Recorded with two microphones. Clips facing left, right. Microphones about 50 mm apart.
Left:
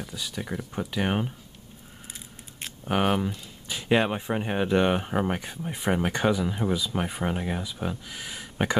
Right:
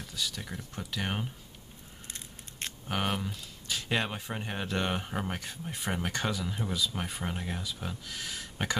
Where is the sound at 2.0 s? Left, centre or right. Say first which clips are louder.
Left 1 dB; centre.